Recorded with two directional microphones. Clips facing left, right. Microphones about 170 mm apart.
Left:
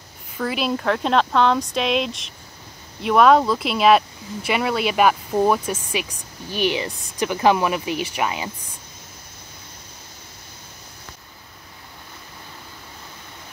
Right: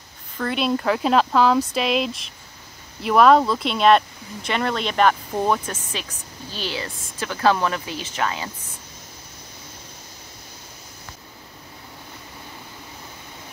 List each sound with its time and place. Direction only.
0.4 s speech: 5° left (ahead or behind)